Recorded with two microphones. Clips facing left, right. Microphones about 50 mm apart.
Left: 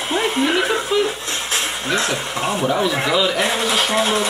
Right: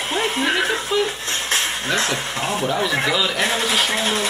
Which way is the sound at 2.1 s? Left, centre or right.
Left.